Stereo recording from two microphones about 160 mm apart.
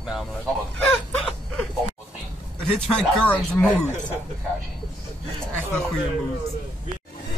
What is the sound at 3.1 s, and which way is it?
Speech, 10° left (ahead or behind).